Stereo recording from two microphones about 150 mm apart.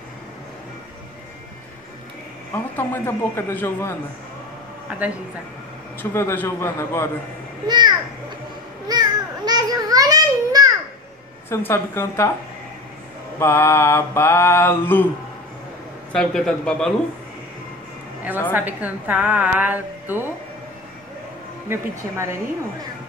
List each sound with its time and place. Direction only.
2.5 s mantra: 15° left (ahead or behind)
6.1 s mantra: 15° left (ahead or behind)
7.6 s a child's voice: 30° right (ahead or behind)
8.8 s a sound: 25° right (ahead or behind)
11.4 s mantra: 15° left (ahead or behind)
13.4 s mantra: 15° left (ahead or behind)
16.1 s a man's voice: 5° left (ahead or behind)
18.5 s a woman's voice: 10° right (ahead or behind)
21.6 s a woman's voice: 20° right (ahead or behind)